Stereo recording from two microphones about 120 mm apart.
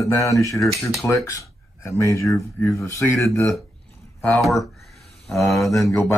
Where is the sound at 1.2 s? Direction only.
25° left (ahead or behind).